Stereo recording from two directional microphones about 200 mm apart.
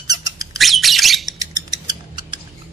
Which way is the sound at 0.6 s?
Centre (ahead or behind).